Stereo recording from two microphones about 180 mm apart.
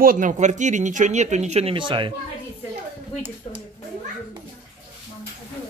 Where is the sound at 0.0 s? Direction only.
50° right (ahead or behind); by 2.1 s 25° right (ahead or behind).